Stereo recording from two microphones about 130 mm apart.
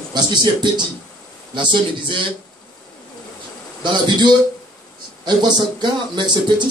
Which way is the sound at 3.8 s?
35° right (ahead or behind).